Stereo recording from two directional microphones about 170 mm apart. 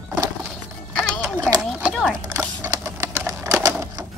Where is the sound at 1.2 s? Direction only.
5° right (ahead or behind).